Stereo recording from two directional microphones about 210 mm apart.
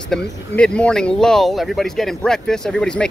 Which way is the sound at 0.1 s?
5° left (ahead or behind).